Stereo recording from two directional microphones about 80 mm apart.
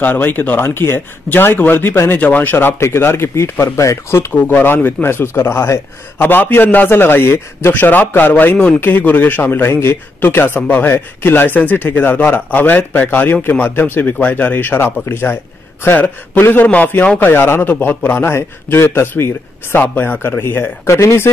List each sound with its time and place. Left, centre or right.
0.0 s a man's voice: left